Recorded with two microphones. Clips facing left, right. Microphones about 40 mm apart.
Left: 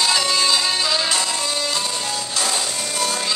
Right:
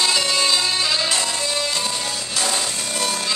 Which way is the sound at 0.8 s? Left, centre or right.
Centre.